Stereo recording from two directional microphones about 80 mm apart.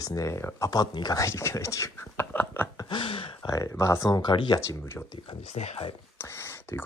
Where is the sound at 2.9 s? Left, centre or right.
Left.